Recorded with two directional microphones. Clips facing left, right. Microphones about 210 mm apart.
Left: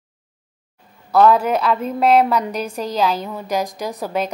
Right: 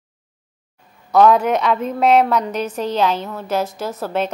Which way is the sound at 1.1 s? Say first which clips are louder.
Right 1 dB; 5° left (ahead or behind).